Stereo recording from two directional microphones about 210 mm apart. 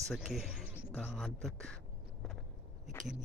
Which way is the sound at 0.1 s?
Centre (ahead or behind).